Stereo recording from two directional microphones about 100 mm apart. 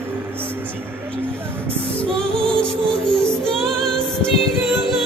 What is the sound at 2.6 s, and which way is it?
Music, 5° left (ahead or behind).